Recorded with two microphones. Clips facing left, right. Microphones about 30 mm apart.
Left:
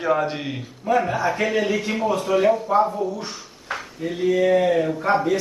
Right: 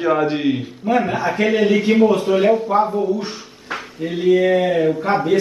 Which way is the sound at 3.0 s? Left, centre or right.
Right.